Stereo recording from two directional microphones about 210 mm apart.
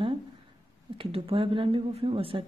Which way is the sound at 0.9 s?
25° right (ahead or behind).